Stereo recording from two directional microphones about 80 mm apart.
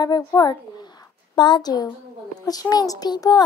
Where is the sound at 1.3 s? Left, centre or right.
Left.